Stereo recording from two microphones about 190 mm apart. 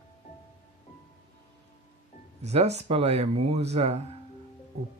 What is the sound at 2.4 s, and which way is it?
Speech, 35° right (ahead or behind).